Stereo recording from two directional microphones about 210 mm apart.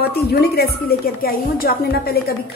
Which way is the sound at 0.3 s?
50° left (ahead or behind).